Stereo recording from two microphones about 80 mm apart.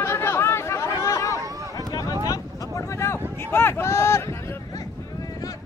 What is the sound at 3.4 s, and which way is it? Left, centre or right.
Speech, left.